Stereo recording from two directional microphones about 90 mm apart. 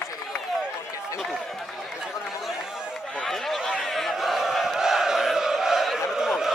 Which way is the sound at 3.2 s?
5° left (ahead or behind).